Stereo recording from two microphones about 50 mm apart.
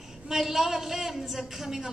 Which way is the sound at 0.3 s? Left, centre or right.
Centre.